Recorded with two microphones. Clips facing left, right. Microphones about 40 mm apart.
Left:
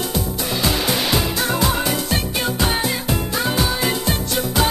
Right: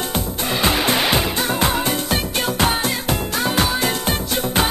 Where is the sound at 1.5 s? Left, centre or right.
Right.